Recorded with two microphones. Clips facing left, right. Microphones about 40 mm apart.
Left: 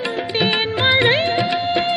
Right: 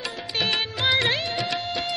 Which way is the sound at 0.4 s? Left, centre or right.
Left.